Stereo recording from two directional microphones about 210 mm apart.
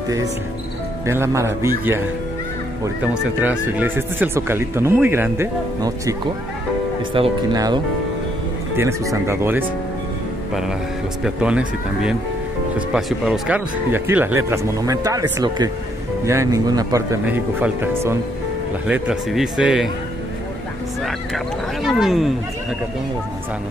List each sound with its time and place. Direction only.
1.0 s speech: 15° right (ahead or behind)
7.2 s speech: 20° right (ahead or behind)
11.2 s speech: 5° right (ahead or behind)
21.8 s speech: centre (ahead or behind)